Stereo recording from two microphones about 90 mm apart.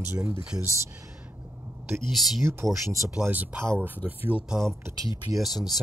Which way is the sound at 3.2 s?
20° right (ahead or behind).